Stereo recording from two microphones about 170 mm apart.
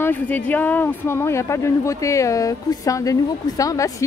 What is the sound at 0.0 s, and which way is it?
Speech, 10° left (ahead or behind).